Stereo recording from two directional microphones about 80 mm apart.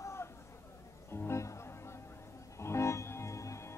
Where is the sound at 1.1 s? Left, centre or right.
Left.